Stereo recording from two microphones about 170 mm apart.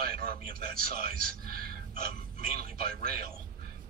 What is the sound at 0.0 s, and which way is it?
A man's voice, 60° right (ahead or behind).